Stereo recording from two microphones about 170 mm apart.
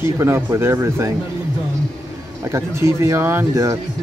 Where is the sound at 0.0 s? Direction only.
15° right (ahead or behind).